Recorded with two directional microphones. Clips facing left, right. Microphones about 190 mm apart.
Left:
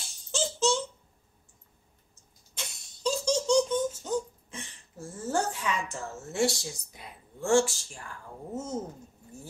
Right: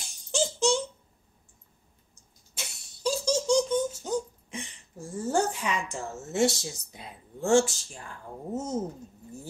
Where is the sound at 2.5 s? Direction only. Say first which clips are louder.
Even; 10° right (ahead or behind).